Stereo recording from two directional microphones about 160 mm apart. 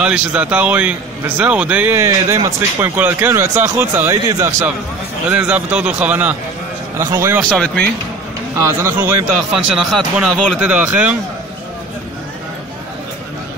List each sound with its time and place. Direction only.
0.0 s speech: 5° right (ahead or behind)
5.3 s speech: 10° right (ahead or behind)
7.4 s speech: 5° left (ahead or behind)
8.5 s speech: 15° right (ahead or behind)
9.8 s speech: 5° right (ahead or behind)